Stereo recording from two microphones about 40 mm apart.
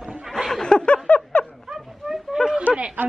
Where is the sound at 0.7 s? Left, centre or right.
Left.